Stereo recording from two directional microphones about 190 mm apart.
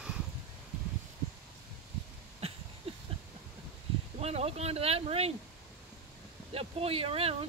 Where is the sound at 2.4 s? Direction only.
35° right (ahead or behind).